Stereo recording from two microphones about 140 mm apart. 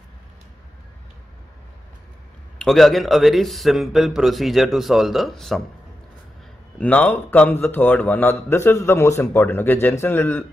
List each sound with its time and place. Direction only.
2.6 s speech: centre (ahead or behind)
6.8 s a man's voice: 10° left (ahead or behind)